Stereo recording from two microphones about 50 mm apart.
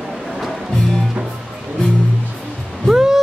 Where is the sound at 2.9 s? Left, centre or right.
Centre.